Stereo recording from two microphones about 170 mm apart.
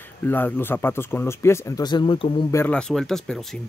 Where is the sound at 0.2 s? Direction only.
10° left (ahead or behind); by 2.4 s 30° left (ahead or behind).